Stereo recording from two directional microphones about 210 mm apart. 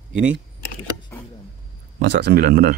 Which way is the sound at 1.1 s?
15° left (ahead or behind).